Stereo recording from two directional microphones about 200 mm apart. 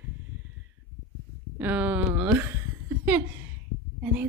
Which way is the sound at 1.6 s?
10° right (ahead or behind).